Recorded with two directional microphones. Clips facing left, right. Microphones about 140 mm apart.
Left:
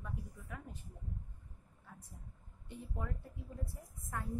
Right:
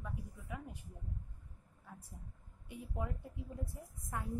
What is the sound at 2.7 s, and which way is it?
Speech, 15° right (ahead or behind).